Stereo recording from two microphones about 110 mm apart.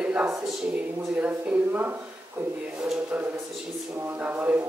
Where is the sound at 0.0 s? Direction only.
10° right (ahead or behind).